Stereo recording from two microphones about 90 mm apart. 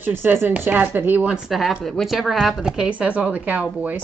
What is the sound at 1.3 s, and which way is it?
A woman's voice, centre (ahead or behind).